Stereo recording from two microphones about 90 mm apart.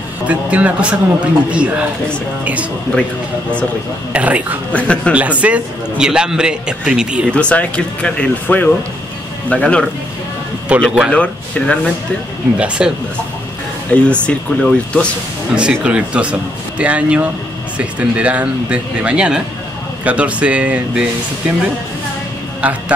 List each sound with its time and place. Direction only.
0.3 s a man's voice: 15° right (ahead or behind)
4.1 s a man's voice: 15° right (ahead or behind)
4.7 s speech: 15° left (ahead or behind)
5.1 s a man's voice: 15° right (ahead or behind)
7.2 s speech: 10° left (ahead or behind)
10.7 s a man's voice: 15° right (ahead or behind)
11.1 s speech: 15° left (ahead or behind)
12.5 s a man's voice: 15° right (ahead or behind)
14.0 s speech: 10° left (ahead or behind)
15.5 s a man's voice: 10° right (ahead or behind)
22.6 s speech: 15° right (ahead or behind)